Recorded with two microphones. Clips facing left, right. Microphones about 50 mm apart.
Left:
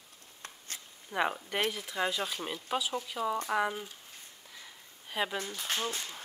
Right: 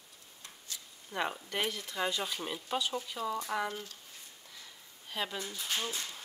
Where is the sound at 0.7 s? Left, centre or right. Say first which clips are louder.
Left 2 dB; left.